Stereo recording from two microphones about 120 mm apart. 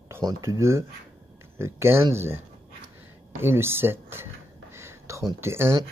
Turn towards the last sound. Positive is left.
turn(degrees=-20)  # may be behind; listen again after turning